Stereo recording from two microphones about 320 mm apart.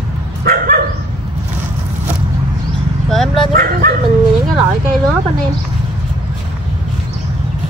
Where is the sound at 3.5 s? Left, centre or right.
Right.